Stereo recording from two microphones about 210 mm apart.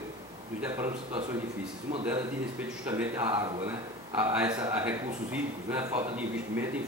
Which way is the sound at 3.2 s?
20° right (ahead or behind).